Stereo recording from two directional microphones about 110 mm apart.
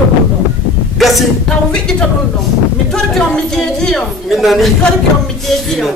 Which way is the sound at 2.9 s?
5° left (ahead or behind).